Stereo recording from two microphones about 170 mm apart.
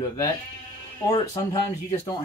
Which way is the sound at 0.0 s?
25° left (ahead or behind).